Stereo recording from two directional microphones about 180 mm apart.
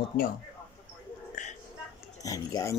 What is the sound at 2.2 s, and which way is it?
Speech, 20° left (ahead or behind).